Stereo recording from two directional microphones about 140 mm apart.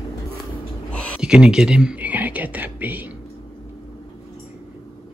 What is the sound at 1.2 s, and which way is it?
Speech, 5° right (ahead or behind).